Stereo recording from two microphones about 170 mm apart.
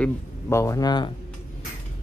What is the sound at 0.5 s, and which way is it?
Speech, 20° left (ahead or behind).